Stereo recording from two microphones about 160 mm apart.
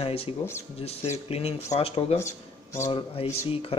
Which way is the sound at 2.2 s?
20° left (ahead or behind).